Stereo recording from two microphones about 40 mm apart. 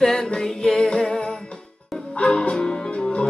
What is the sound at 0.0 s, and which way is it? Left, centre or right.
Music, centre.